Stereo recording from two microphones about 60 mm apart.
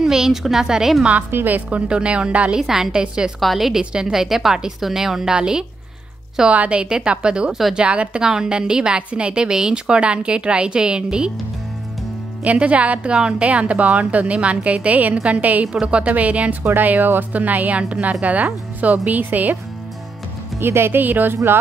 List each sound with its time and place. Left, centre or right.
0.0 s a woman's voice: centre
1.3 s a woman's voice: right
2.6 s a woman's voice: centre
12.4 s a woman's voice: right
20.5 s speech: right